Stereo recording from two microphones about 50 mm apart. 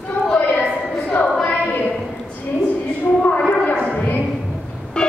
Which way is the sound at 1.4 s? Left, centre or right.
Left.